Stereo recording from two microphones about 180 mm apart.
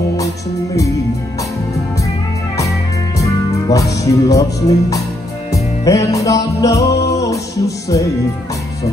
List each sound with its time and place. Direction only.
3.2 s speech: 20° left (ahead or behind)
5.5 s music: 20° left (ahead or behind)